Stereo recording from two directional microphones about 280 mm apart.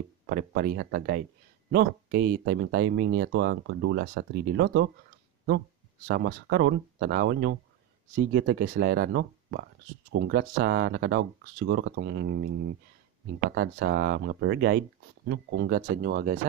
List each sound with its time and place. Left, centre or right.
0.3 s speech: right
6.0 s speech: right
13.6 s speech: right